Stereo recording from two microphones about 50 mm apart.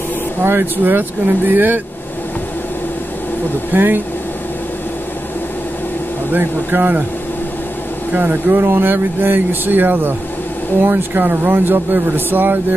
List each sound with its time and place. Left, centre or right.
0.4 s speech: right
3.7 s speech: right
6.3 s speech: right
8.1 s speech: right